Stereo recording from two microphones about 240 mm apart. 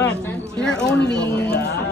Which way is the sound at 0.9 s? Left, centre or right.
Left.